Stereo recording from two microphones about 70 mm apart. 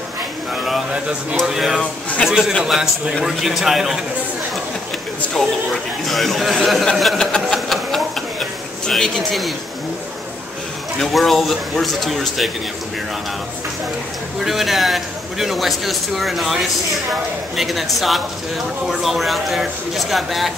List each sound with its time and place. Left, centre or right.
1.4 s a man's voice: centre
1.8 s a man's voice: centre
2.2 s a man's voice: centre
6.0 s a man's voice: centre
7.5 s a sound: centre
11.0 s a man's voice: centre
14.4 s a man's voice: centre
17.6 s a man's voice: centre